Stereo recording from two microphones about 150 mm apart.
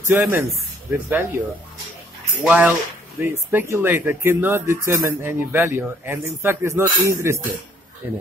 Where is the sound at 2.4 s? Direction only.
10° right (ahead or behind).